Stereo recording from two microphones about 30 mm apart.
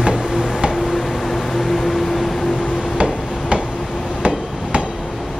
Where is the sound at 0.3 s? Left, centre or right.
Right.